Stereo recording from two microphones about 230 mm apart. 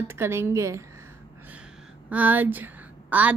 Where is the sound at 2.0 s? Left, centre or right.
Centre.